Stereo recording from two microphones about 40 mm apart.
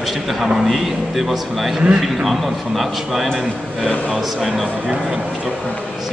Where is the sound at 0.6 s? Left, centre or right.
Centre.